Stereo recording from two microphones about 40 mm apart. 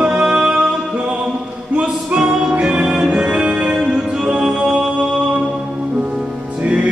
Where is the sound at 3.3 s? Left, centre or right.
Right.